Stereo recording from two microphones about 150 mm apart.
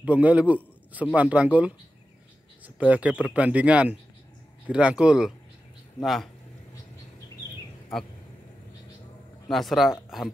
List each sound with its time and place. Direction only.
0.0 s speech: 10° right (ahead or behind)
9.5 s speech: centre (ahead or behind)